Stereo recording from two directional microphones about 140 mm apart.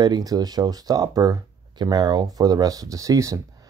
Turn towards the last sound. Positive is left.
turn(degrees=-25)  # may be behind; listen again after turning